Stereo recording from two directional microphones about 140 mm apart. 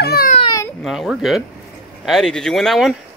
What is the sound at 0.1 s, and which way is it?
Baby cry, 90° left.